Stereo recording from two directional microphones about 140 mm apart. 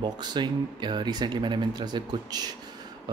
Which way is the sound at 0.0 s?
30° right (ahead or behind).